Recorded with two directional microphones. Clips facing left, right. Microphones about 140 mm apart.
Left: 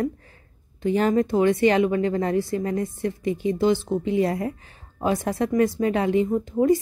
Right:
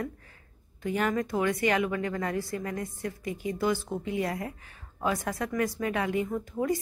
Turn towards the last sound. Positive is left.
turn(degrees=25)  # may be behind; listen again after turning